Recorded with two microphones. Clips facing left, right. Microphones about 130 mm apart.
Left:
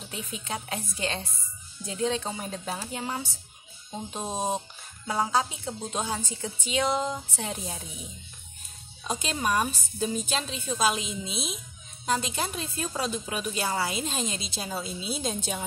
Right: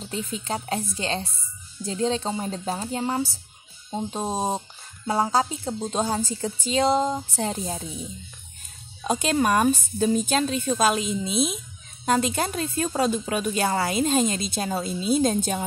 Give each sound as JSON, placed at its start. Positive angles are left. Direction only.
{"t": 0.1, "sound": "a woman's voice", "side_deg": -35}
{"t": 9.0, "sound": "a woman's voice", "side_deg": -55}
{"t": 12.3, "sound": "a woman's voice", "side_deg": -50}